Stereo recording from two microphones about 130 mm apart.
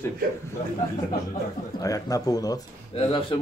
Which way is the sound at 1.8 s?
25° left (ahead or behind).